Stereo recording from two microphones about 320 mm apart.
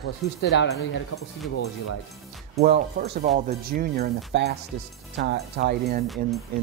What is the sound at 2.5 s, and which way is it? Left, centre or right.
Speech, right.